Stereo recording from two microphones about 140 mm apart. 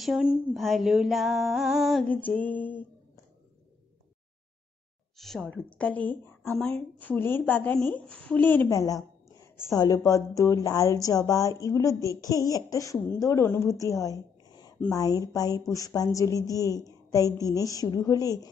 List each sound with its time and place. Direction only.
0.0 s a sound: 5° right (ahead or behind)
2.2 s speech: 10° left (ahead or behind)
5.1 s speech: centre (ahead or behind); by 18.5 s 25° left (ahead or behind)